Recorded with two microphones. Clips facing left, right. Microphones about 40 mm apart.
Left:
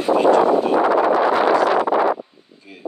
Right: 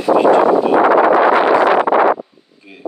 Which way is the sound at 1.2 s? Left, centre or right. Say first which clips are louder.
Right 5 dB; right.